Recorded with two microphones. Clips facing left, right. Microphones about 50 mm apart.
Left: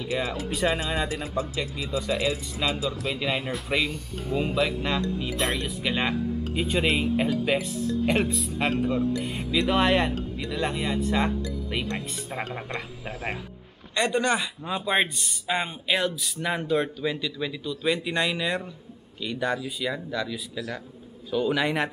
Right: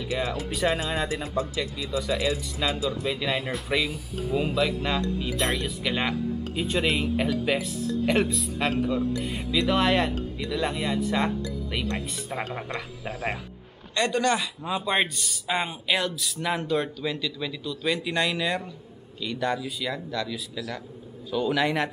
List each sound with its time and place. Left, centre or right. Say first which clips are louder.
0.0 s speech: even; centre
13.9 s speech: even; centre
14.7 s speech: even; centre